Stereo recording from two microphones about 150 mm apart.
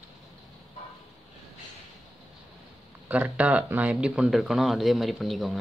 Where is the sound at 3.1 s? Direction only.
10° right (ahead or behind).